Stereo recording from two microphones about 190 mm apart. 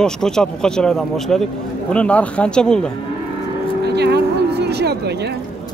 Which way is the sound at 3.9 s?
60° right (ahead or behind).